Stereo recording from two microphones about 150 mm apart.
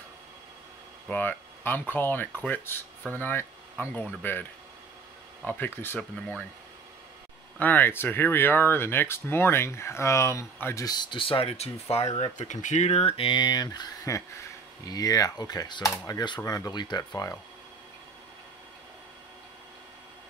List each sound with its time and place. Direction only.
1.0 s speech: 10° left (ahead or behind)
7.5 s speech: 10° left (ahead or behind)